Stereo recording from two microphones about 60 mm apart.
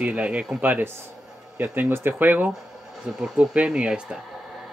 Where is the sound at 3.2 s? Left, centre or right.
Centre.